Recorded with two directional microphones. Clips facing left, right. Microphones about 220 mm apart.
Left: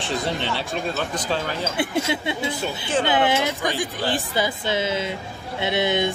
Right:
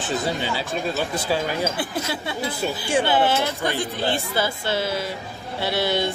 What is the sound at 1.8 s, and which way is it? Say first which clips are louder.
Speech: left 4 dB; 25° left (ahead or behind).